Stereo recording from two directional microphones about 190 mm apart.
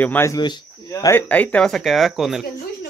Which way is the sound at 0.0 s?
10° left (ahead or behind).